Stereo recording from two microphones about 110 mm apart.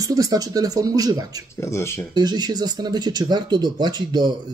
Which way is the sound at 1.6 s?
25° left (ahead or behind).